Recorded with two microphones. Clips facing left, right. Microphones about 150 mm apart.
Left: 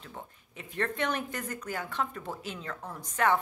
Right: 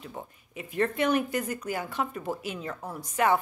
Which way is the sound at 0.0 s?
10° right (ahead or behind).